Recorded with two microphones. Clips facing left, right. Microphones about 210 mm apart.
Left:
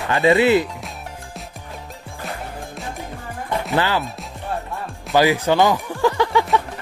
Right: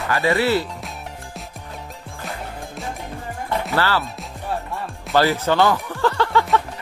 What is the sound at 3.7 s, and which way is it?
Speech, 15° left (ahead or behind).